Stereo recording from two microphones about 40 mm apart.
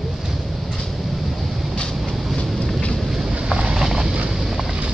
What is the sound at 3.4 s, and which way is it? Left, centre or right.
Vehicle, right.